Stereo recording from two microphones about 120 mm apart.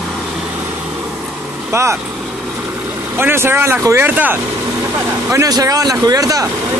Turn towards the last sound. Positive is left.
turn(degrees=-30)  # may be behind; listen again after turning